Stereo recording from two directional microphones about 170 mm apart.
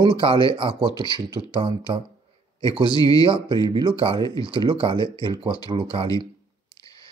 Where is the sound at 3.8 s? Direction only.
30° right (ahead or behind).